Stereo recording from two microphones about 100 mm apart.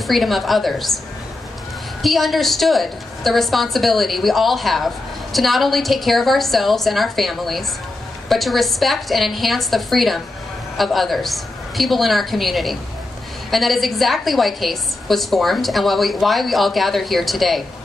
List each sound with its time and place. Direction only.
0.0 s a woman's voice: centre (ahead or behind)
2.0 s a woman's voice: centre (ahead or behind)